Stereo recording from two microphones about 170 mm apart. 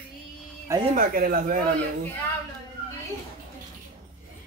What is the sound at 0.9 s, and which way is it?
Speech, 55° right (ahead or behind).